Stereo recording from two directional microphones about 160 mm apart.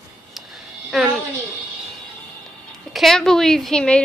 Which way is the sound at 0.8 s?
Centre (ahead or behind).